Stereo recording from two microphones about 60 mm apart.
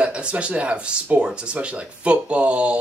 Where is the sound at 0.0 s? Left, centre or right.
Centre.